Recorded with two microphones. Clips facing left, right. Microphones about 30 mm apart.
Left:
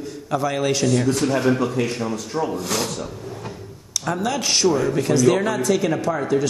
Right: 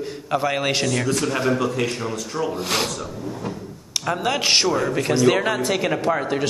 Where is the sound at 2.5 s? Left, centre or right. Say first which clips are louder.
Right 1 dB; right.